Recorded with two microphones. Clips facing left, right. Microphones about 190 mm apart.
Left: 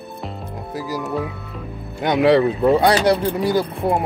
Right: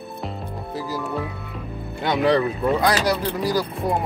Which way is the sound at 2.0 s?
20° left (ahead or behind).